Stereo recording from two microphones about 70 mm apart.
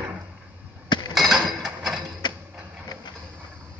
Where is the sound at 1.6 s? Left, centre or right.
Centre.